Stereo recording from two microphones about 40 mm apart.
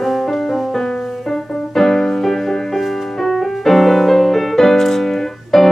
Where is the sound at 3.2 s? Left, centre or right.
Centre.